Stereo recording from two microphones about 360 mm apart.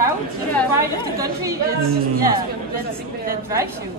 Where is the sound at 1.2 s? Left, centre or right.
Centre.